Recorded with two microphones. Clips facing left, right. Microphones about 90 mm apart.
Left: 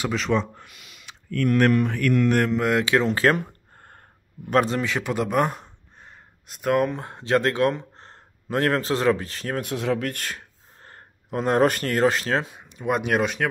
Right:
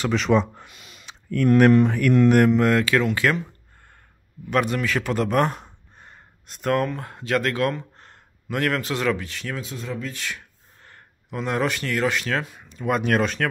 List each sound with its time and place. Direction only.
0.0 s speech: 5° left (ahead or behind)
0.3 s speech: 10° right (ahead or behind)
0.7 s a sound: 30° right (ahead or behind)
1.7 s speech: 25° right (ahead or behind)
2.2 s speech: 10° right (ahead or behind)
2.7 s speech: 20° left (ahead or behind)
3.3 s a sound: 45° left (ahead or behind)
4.5 s a man's voice: 30° left (ahead or behind)
9.6 s speech: 70° left (ahead or behind)
10.1 s speech: 40° left (ahead or behind)
12.5 s speech: 20° left (ahead or behind)